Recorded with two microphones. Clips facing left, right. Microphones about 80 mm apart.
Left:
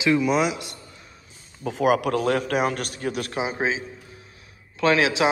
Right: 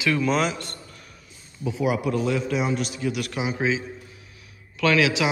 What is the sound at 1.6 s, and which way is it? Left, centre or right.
A man's voice, left.